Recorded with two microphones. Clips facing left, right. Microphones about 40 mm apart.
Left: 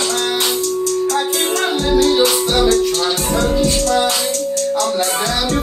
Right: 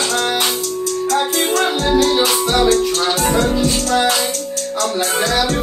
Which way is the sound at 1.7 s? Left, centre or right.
Right.